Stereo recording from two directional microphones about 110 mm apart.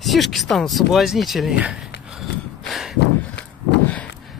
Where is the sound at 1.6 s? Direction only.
5° right (ahead or behind).